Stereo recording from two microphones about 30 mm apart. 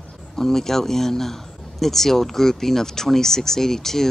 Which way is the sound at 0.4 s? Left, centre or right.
Centre.